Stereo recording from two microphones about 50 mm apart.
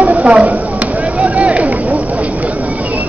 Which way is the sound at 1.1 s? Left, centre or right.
Right.